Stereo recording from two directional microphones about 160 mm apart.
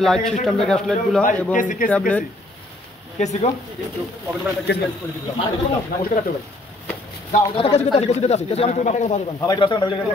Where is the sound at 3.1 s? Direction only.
45° left (ahead or behind).